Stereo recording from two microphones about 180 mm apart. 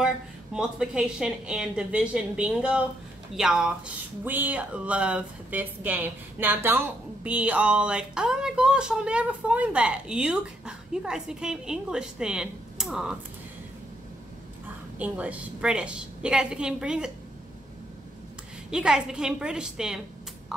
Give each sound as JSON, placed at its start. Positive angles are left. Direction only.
{"t": 0.0, "sound": "speech", "side_deg": -5}
{"t": 15.0, "sound": "speech", "side_deg": -10}
{"t": 18.7, "sound": "speech", "side_deg": -5}